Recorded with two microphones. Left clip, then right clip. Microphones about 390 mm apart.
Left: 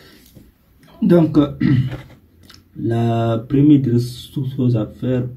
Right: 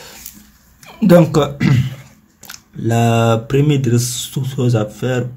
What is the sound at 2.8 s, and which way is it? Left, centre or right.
Speech, centre.